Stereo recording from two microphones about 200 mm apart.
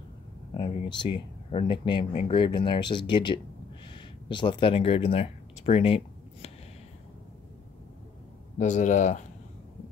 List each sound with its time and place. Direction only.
0.6 s speech: 25° left (ahead or behind)
8.5 s speech: 35° left (ahead or behind)